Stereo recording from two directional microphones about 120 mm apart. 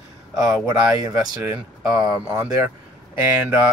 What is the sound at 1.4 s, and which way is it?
Speech, 10° right (ahead or behind).